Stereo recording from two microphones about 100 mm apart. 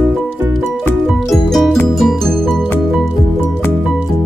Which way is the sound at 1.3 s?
Centre (ahead or behind).